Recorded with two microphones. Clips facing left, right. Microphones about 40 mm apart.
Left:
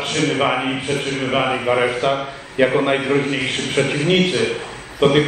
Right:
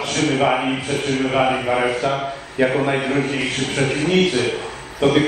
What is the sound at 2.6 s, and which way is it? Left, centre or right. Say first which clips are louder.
Speech: left 2 dB; left.